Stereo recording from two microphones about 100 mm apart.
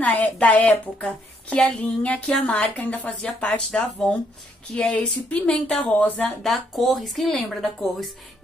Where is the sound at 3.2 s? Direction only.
5° left (ahead or behind).